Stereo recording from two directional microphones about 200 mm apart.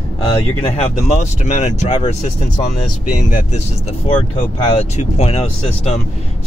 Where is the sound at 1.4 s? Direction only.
35° left (ahead or behind).